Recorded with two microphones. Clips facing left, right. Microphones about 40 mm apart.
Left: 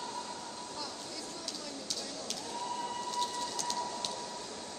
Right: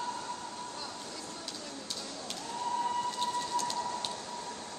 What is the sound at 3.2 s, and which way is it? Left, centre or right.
Train, right.